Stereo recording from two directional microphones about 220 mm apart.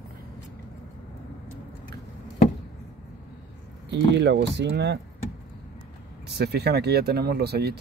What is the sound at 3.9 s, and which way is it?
Speech, 50° right (ahead or behind).